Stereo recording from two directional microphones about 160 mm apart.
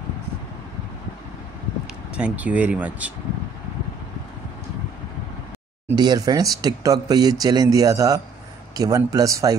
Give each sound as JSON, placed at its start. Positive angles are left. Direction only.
{"t": 2.1, "sound": "speech", "side_deg": -10}
{"t": 5.9, "sound": "speech", "side_deg": -25}